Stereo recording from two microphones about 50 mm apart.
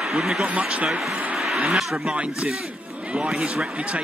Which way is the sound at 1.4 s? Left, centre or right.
Centre.